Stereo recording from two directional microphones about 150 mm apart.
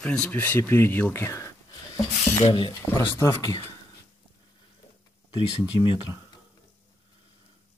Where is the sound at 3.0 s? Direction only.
20° left (ahead or behind).